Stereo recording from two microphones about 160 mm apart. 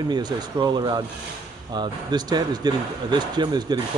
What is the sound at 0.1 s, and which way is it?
Speech, 25° right (ahead or behind).